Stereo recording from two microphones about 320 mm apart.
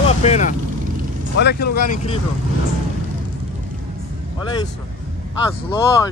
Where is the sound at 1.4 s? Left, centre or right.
Left.